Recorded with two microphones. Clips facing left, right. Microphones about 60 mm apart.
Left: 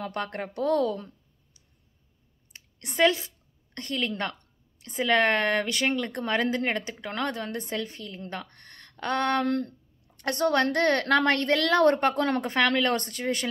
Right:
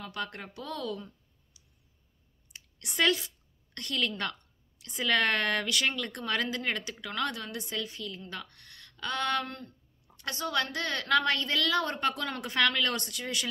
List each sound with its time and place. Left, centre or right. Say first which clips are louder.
0.0 s speech: left 6 dB; left
2.5 s a sound: left 3 dB; left
3.7 s a woman's voice: left 2 dB; left
9.5 s a woman's voice: left 15 dB; left